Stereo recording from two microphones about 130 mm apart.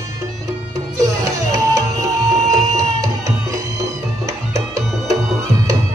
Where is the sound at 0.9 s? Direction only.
25° right (ahead or behind).